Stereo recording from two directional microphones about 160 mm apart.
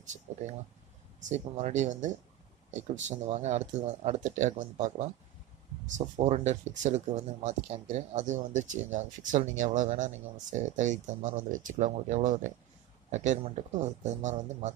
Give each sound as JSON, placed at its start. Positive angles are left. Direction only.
{"t": 0.3, "sound": "speech", "side_deg": -45}